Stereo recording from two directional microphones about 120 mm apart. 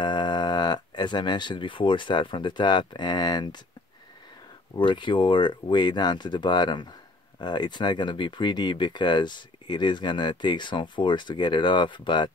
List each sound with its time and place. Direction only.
0.0 s speech: 40° left (ahead or behind)
4.7 s speech: 40° left (ahead or behind)